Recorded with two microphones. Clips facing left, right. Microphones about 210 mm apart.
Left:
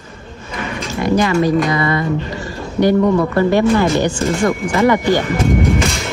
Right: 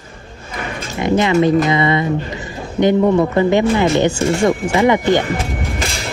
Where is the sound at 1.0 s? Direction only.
20° right (ahead or behind).